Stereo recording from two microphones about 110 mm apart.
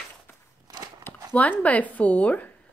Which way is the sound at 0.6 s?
35° right (ahead or behind).